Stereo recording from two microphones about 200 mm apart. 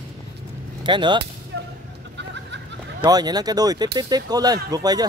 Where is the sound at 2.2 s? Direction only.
60° right (ahead or behind).